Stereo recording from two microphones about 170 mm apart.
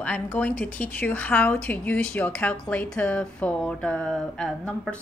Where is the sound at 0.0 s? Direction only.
10° left (ahead or behind).